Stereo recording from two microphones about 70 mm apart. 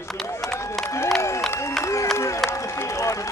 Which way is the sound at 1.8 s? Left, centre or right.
Left.